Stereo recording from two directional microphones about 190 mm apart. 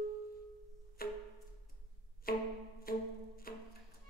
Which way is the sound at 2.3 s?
50° left (ahead or behind).